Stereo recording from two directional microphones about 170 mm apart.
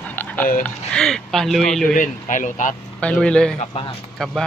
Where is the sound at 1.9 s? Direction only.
50° left (ahead or behind).